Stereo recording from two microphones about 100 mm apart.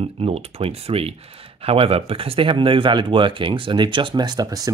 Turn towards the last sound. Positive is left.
turn(degrees=-40)  # may be behind; listen again after turning